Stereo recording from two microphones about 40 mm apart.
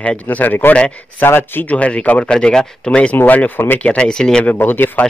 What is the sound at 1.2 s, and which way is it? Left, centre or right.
Speech, left.